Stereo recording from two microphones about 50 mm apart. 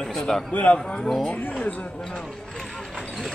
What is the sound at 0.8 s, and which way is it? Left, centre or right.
Speech, centre.